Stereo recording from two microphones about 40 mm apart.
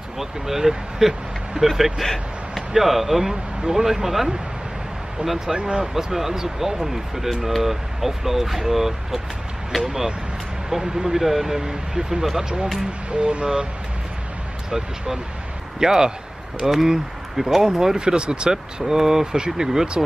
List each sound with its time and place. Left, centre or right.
0.2 s speech: centre
2.0 s speech: centre
2.5 s speech: centre
5.5 s speech: right
13.1 s speech: right
15.8 s speech: centre